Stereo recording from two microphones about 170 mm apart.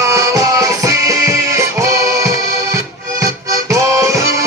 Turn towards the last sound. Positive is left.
turn(degrees=-20)  # may be behind; listen again after turning